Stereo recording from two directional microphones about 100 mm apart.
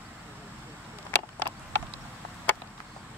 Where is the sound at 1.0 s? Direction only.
20° left (ahead or behind).